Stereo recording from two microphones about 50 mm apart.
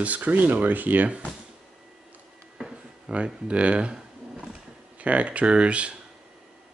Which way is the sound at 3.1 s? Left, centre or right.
Right.